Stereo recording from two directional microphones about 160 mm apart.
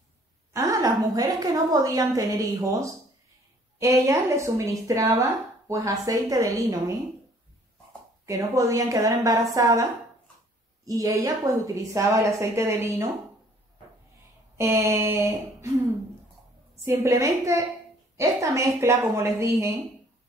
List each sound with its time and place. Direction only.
0.5 s a woman's voice: 20° right (ahead or behind)
8.3 s a woman's voice: 20° right (ahead or behind)
10.9 s a woman's voice: 20° right (ahead or behind)
14.6 s a woman's voice: 15° right (ahead or behind)
16.8 s a woman's voice: 15° right (ahead or behind)